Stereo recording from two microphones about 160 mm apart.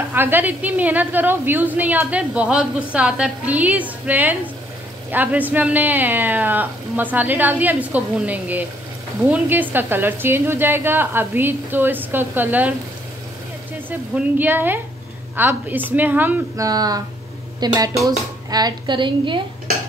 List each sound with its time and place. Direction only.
0.1 s speech: 10° right (ahead or behind)
13.8 s speech: 10° right (ahead or behind)
16.6 s speech: 25° right (ahead or behind)